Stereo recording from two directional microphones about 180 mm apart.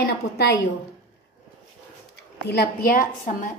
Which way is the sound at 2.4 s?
55° left (ahead or behind).